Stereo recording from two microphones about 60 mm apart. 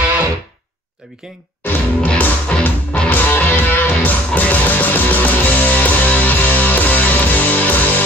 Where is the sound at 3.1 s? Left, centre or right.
Left.